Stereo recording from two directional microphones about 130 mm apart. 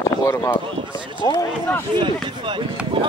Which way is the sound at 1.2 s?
35° left (ahead or behind).